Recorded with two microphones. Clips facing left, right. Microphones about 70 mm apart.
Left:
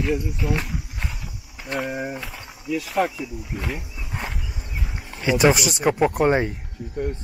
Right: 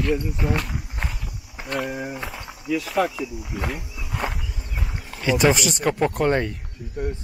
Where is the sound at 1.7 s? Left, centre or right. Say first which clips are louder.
Even; centre.